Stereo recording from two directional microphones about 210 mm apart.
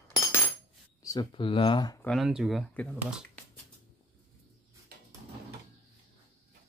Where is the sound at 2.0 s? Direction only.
Centre (ahead or behind).